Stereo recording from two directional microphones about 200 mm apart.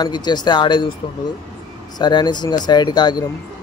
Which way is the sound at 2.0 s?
20° left (ahead or behind).